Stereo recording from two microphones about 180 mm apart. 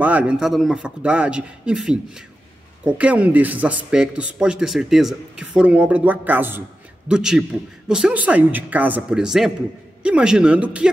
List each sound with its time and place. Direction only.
0.0 s a man's voice: 10° right (ahead or behind)